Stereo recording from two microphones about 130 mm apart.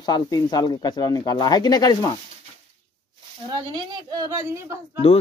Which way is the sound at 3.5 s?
30° right (ahead or behind).